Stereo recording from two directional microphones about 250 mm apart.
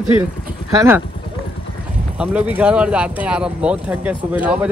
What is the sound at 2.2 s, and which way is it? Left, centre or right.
Speech, centre.